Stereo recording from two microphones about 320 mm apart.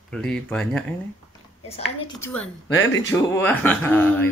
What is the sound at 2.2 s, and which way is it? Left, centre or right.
Speech, centre.